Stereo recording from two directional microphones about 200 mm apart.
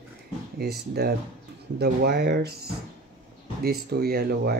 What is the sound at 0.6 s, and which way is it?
Speech, 55° right (ahead or behind).